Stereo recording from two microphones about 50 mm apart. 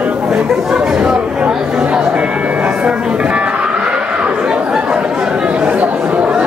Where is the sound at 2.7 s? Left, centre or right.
Centre.